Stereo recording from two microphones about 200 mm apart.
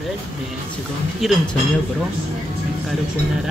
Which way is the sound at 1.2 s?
Centre (ahead or behind).